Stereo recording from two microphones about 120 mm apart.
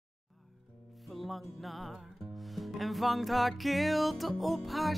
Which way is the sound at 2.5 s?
Centre (ahead or behind).